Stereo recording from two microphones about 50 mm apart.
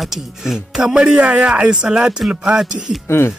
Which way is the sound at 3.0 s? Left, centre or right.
Left.